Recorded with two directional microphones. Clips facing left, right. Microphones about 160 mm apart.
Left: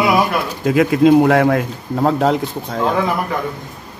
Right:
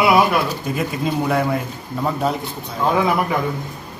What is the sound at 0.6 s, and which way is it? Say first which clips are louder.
Speech: left 11 dB; 85° left.